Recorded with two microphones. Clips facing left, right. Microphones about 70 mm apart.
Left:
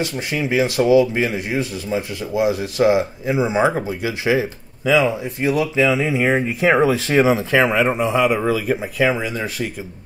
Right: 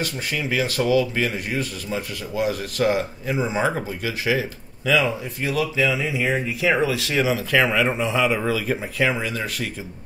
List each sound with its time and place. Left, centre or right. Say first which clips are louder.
0.0 s speech: left 4 dB; left
8.0 s a man's voice: left 4 dB; centre